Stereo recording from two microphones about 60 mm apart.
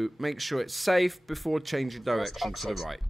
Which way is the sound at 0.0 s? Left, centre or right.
Centre.